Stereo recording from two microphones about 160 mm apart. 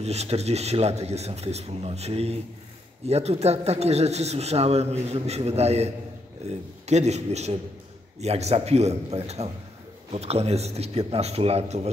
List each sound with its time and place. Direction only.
0.0 s a man's voice: 40° right (ahead or behind)